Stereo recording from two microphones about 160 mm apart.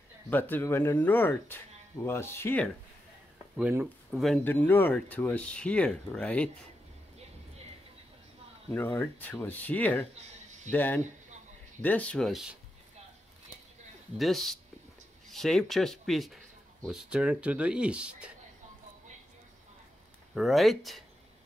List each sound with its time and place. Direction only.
0.3 s speech: 10° left (ahead or behind)
3.5 s speech: 5° right (ahead or behind)
4.5 s speech: 10° left (ahead or behind)
8.7 s speech: 15° left (ahead or behind)
10.1 s a sound: 50° right (ahead or behind)
10.7 s speech: 10° left (ahead or behind)
14.1 s speech: centre (ahead or behind)
20.3 s speech: centre (ahead or behind)